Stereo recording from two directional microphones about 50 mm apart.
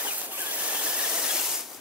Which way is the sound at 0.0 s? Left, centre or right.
Right.